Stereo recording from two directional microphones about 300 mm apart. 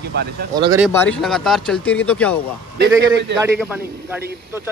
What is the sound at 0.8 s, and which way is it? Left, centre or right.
Speech, centre.